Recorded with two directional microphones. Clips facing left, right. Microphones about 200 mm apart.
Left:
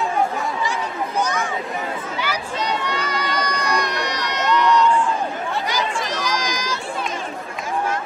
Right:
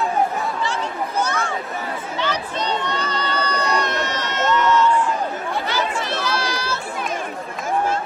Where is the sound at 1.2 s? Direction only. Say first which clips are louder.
Even; 15° left (ahead or behind).